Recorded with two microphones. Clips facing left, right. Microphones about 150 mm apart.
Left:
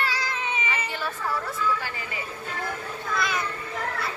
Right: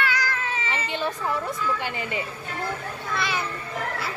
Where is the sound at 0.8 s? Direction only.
20° right (ahead or behind).